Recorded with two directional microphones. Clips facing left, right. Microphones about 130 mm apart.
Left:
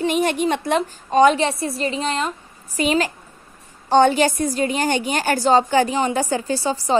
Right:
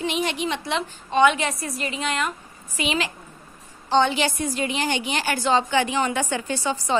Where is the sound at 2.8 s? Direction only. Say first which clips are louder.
Left 6 dB; 40° left (ahead or behind).